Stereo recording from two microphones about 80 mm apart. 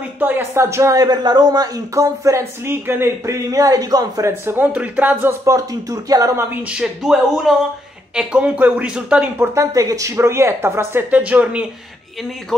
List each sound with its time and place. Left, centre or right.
0.2 s speech: right
1.0 s speech: right
4.3 s speech: right
5.4 s speech: right
6.7 s speech: centre
9.4 s speech: right
11.1 s speech: centre